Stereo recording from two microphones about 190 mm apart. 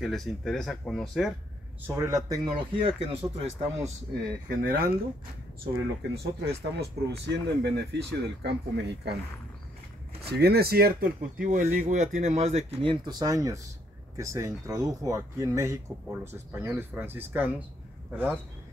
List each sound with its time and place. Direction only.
0.0 s speech: centre (ahead or behind)
1.9 s a man's voice: 15° right (ahead or behind); by 3.9 s 35° right (ahead or behind)
4.5 s speech: 50° right (ahead or behind)
6.1 s speech: 60° right (ahead or behind)
10.2 s speech: 55° right (ahead or behind); by 18.4 s 10° right (ahead or behind)